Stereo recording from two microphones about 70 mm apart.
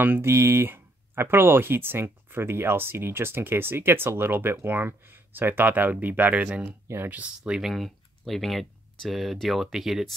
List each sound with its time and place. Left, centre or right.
0.0 s speech: right
6.9 s speech: right
7.2 s speech: centre
7.6 s speech: centre